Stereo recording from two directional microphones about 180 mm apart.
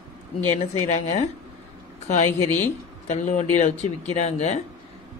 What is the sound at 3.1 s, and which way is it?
Speech, 40° left (ahead or behind).